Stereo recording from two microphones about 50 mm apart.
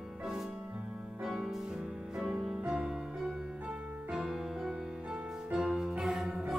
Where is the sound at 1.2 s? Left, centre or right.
Centre.